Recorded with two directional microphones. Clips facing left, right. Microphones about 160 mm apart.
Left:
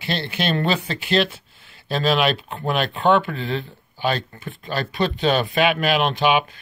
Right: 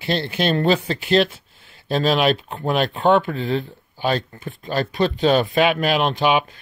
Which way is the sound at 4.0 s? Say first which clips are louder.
Right 2 dB; 35° right (ahead or behind).